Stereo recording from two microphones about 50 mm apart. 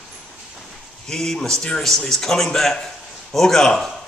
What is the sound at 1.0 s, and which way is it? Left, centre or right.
A man's voice, centre.